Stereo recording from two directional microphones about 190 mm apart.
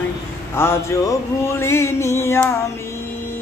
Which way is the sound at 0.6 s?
15° left (ahead or behind).